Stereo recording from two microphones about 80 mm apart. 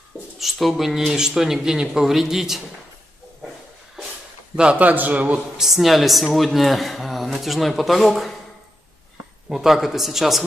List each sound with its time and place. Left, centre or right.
0.4 s speech: centre
4.6 s a man's voice: centre
5.6 s speech: centre
9.5 s speech: centre